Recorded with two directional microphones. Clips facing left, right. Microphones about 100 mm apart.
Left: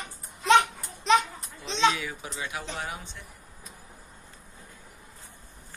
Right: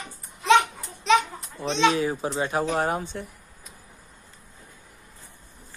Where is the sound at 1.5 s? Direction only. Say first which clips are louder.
Right 8 dB; 45° right (ahead or behind).